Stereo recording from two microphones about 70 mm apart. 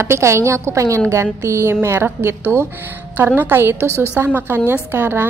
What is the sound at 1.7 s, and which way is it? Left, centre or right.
A woman's voice, right.